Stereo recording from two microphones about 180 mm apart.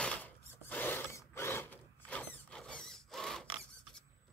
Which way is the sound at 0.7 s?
10° left (ahead or behind).